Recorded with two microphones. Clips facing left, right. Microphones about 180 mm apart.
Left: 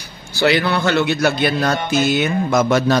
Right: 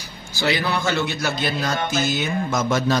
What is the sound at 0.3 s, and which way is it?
A man's voice, 65° left (ahead or behind).